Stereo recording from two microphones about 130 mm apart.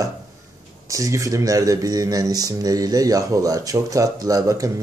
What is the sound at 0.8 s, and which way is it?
Speech, 25° right (ahead or behind).